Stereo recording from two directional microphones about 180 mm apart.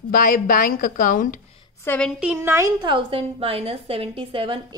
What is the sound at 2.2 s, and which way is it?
Speech, 10° right (ahead or behind).